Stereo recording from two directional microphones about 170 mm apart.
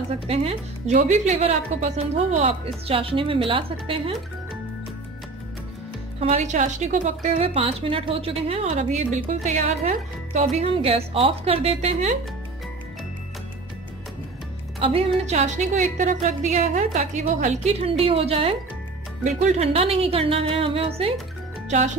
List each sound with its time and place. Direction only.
0.3 s speech: 35° right (ahead or behind)
6.1 s speech: 40° right (ahead or behind)
14.8 s a woman's voice: 35° right (ahead or behind)